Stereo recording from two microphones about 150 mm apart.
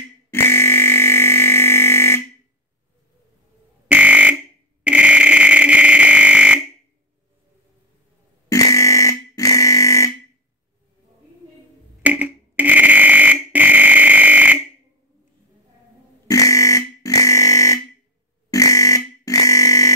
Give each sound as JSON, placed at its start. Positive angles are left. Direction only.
{"t": 0.3, "sound": "a sound", "side_deg": 15}
{"t": 3.9, "sound": "fire alarm", "side_deg": -10}
{"t": 4.8, "sound": "a sound", "side_deg": -5}
{"t": 8.5, "sound": "fire alarm", "side_deg": 20}
{"t": 12.0, "sound": "fire alarm", "side_deg": -10}
{"t": 16.3, "sound": "fire alarm", "side_deg": 20}